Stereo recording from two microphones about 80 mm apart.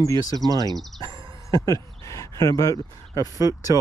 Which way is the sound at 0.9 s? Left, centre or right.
Right.